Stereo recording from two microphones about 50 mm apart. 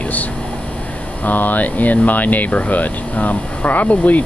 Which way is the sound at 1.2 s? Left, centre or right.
Left.